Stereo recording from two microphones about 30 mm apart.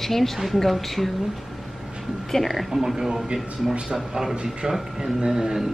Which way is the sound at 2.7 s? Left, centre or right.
Centre.